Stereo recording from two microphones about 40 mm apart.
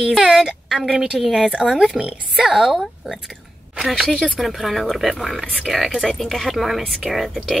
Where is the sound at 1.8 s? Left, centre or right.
Right.